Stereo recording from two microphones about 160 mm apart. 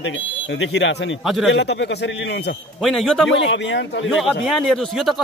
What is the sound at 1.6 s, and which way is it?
Speech, 90° left.